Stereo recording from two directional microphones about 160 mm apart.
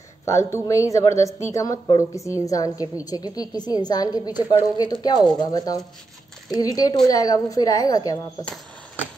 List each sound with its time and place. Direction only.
0.2 s a woman's voice: 20° left (ahead or behind)